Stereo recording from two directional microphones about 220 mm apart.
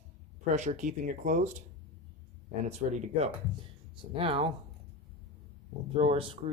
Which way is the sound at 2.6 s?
30° right (ahead or behind).